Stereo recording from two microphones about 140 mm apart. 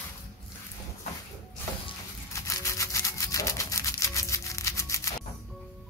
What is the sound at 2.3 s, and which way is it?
Toothbrush, 20° left (ahead or behind).